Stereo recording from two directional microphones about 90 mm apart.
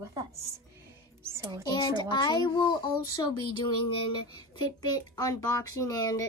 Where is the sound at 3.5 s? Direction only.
60° left (ahead or behind); by 6.2 s 45° left (ahead or behind).